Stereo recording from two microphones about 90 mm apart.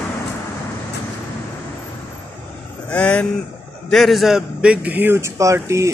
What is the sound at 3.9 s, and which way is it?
A man's voice, centre (ahead or behind).